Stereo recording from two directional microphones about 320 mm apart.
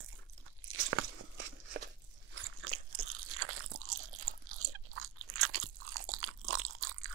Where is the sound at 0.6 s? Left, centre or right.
Right.